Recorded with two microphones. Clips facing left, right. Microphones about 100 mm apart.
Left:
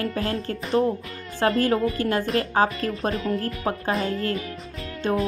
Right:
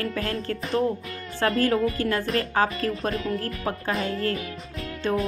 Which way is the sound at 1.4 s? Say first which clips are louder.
Left 1 dB; 25° left (ahead or behind).